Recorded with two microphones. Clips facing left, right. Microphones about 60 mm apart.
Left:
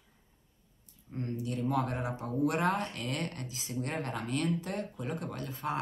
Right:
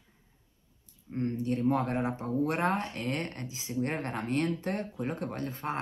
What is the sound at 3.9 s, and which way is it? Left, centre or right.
Speech, right.